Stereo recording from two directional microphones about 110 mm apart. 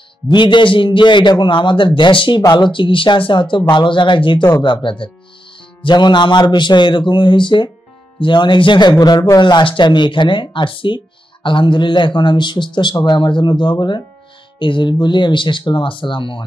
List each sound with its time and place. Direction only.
0.3 s speech: 45° left (ahead or behind)